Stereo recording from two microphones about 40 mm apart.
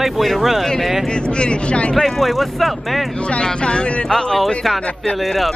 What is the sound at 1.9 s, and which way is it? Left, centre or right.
Speech, centre.